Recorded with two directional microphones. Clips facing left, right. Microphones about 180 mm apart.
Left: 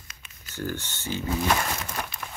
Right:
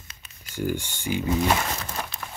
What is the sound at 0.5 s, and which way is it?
Speech, 15° right (ahead or behind).